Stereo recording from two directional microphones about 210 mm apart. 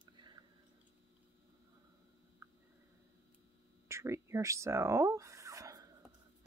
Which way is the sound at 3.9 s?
15° right (ahead or behind).